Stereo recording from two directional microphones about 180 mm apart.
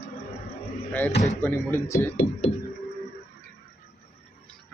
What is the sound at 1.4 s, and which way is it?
Speech, 15° left (ahead or behind).